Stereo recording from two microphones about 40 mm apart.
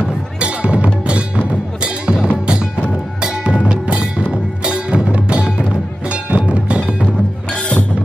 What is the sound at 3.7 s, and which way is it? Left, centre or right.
Music, right.